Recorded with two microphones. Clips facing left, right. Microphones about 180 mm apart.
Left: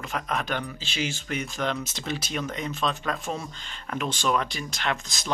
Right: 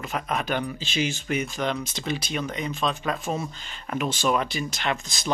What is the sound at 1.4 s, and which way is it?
Speech, centre (ahead or behind).